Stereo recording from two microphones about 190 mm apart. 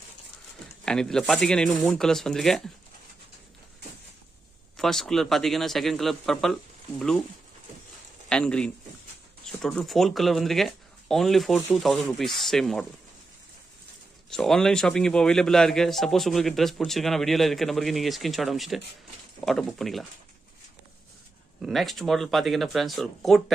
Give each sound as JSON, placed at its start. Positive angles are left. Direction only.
{"t": 0.8, "sound": "speech", "side_deg": 5}
{"t": 4.7, "sound": "speech", "side_deg": 0}
{"t": 8.3, "sound": "speech", "side_deg": 5}
{"t": 14.3, "sound": "speech", "side_deg": 0}
{"t": 21.5, "sound": "speech", "side_deg": 0}